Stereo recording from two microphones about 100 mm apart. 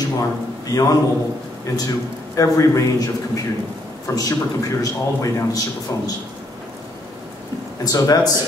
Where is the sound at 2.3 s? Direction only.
35° left (ahead or behind).